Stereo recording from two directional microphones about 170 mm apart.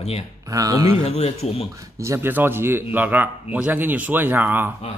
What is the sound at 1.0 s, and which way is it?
Speech, 40° left (ahead or behind).